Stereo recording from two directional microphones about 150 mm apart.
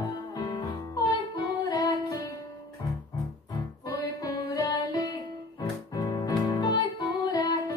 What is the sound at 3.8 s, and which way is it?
Music, 25° left (ahead or behind).